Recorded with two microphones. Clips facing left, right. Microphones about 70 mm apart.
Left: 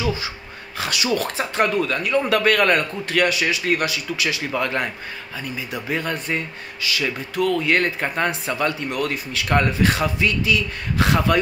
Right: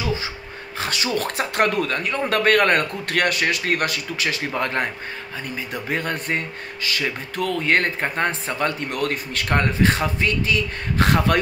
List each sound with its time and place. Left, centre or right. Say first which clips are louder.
0.7 s speech: left 2 dB; right
1.3 s speech: even; right
8.9 s speech: even; right